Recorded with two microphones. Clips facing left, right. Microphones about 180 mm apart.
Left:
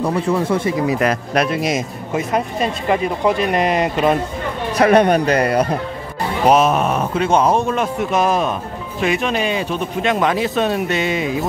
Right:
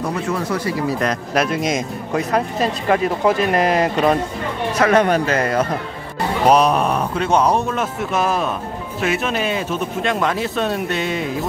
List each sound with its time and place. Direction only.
0.4 s speech: 25° left (ahead or behind)
0.9 s speech: 5° left (ahead or behind)
4.9 s a man's voice: 15° left (ahead or behind)
6.4 s speech: centre (ahead or behind)